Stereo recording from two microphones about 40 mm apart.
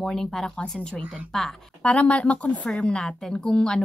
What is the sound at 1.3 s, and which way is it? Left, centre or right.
Speech, centre.